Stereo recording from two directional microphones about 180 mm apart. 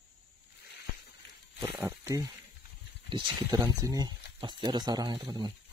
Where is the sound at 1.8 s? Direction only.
15° right (ahead or behind).